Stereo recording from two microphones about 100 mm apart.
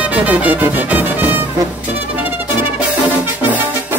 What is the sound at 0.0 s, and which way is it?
Music, 15° right (ahead or behind).